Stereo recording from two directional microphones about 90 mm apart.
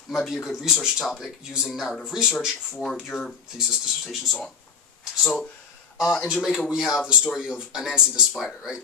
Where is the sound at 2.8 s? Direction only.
5° left (ahead or behind).